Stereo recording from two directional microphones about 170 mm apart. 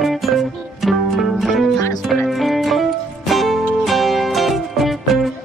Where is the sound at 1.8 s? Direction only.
20° left (ahead or behind).